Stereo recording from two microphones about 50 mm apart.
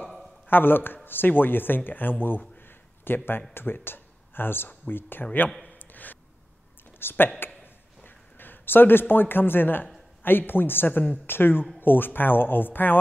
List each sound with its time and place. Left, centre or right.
0.5 s speech: left
5.8 s a sound: left
7.0 s speech: left